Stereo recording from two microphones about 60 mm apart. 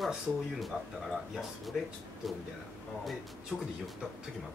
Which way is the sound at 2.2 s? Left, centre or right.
Centre.